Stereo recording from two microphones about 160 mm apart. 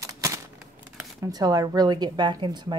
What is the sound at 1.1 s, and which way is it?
Speech, 25° right (ahead or behind).